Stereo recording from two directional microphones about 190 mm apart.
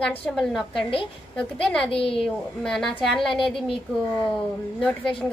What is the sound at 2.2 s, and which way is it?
A woman's voice, 5° left (ahead or behind).